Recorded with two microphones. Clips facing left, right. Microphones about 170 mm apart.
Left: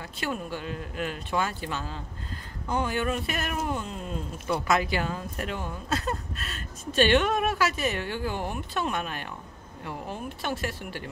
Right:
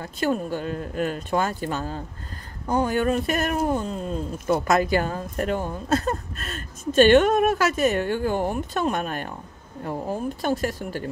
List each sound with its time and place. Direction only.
0.0 s speech: 45° right (ahead or behind)